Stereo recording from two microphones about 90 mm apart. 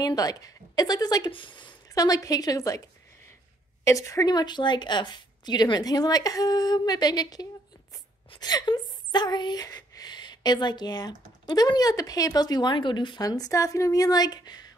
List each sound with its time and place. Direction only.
0.0 s speech: 45° left (ahead or behind)
1.3 s speech: 65° left (ahead or behind)
2.0 s speech: 45° left (ahead or behind)
3.8 s a woman's voice: 35° left (ahead or behind)
4.3 s speech: 55° left (ahead or behind)
13.2 s a woman's voice: 40° left (ahead or behind)